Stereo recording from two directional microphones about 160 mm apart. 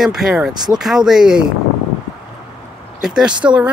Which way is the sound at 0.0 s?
5° right (ahead or behind).